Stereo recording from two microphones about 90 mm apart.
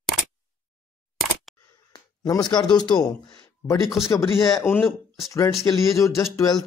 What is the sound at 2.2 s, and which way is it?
Speech, 55° left (ahead or behind).